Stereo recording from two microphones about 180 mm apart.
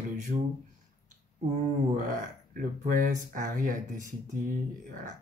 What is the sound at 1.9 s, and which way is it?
Speech, 50° right (ahead or behind).